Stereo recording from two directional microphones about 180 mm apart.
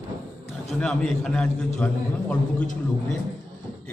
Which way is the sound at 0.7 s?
5° left (ahead or behind).